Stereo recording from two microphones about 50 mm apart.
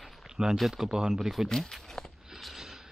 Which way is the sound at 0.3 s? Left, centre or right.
Centre.